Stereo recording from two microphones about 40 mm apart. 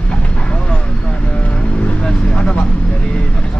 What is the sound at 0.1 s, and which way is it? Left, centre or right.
Vehicle, left.